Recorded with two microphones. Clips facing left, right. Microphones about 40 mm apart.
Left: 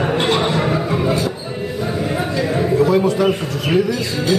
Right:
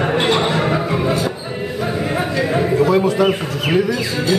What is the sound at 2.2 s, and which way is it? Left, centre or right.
Speech, centre.